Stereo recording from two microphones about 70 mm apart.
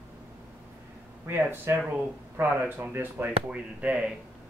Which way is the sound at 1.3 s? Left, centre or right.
Right.